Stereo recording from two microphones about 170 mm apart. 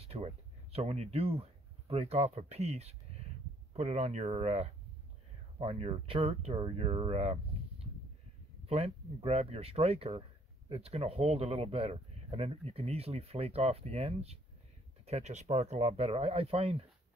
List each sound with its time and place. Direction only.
0.0 s a sound: 35° right (ahead or behind)
0.7 s speech: 40° right (ahead or behind)
8.6 s speech: 35° right (ahead or behind)